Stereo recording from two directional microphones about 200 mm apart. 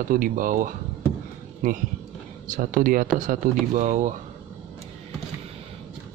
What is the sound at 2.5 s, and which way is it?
Speech, 45° right (ahead or behind).